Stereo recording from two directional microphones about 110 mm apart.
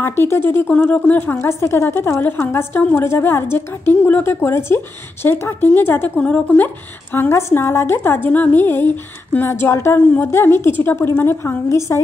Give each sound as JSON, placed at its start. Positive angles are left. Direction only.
{"t": 0.0, "sound": "speech", "side_deg": 20}